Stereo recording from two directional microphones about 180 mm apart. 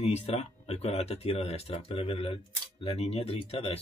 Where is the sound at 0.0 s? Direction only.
35° left (ahead or behind).